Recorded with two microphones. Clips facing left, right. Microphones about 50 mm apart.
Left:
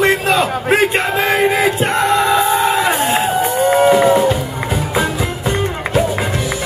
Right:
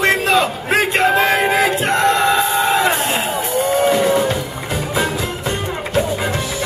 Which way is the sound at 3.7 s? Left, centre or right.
Left.